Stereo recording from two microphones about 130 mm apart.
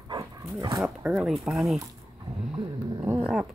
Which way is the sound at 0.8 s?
5° right (ahead or behind).